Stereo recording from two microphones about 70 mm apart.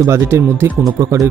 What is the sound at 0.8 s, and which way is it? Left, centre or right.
Speech, right.